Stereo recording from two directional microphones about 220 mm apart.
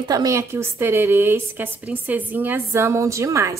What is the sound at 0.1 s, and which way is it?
A woman's voice, 15° right (ahead or behind).